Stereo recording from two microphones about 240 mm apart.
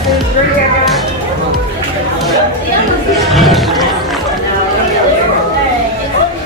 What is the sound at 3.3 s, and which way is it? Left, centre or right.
Music, centre.